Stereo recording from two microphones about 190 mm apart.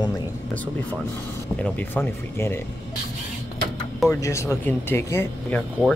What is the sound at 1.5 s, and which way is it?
Speech, 5° left (ahead or behind).